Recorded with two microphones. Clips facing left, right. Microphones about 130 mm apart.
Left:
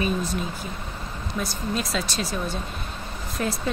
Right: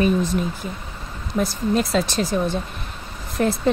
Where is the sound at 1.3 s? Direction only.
55° right (ahead or behind).